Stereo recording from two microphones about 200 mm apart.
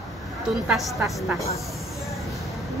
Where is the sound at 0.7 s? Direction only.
Centre (ahead or behind).